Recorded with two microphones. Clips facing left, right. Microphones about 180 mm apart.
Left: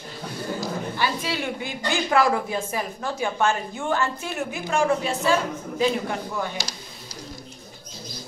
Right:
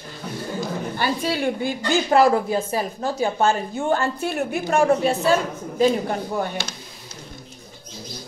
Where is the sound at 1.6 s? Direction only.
35° right (ahead or behind).